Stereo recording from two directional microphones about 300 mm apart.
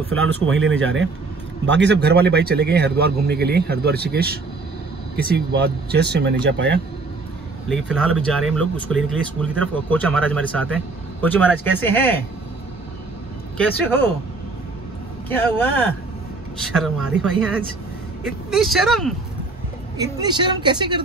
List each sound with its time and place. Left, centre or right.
0.5 s speech: right
7.7 s speech: centre
13.6 s speech: centre
15.2 s speech: centre
20.0 s speech: centre